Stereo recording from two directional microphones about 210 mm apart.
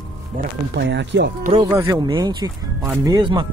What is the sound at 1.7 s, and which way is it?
Speech, 15° right (ahead or behind).